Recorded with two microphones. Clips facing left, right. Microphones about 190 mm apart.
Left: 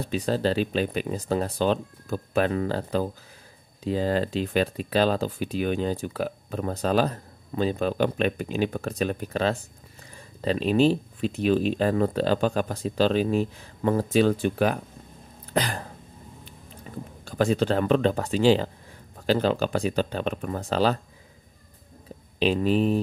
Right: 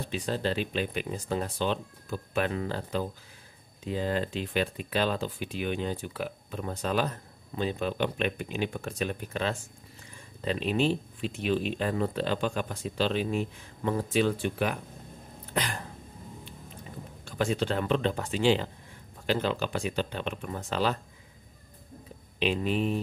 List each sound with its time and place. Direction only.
0.0 s speech: 40° left (ahead or behind)
15.5 s a sound: 35° left (ahead or behind)
17.2 s speech: 40° left (ahead or behind)
22.4 s speech: 35° left (ahead or behind)